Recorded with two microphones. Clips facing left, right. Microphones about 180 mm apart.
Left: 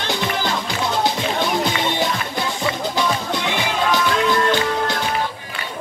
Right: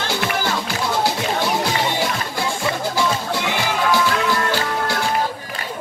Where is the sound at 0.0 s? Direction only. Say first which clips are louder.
Even; 20° left (ahead or behind).